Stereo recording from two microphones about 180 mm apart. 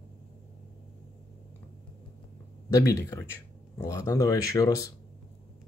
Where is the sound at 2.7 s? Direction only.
20° left (ahead or behind).